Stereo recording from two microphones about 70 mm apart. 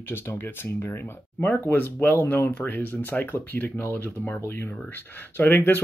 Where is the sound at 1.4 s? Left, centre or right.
Left.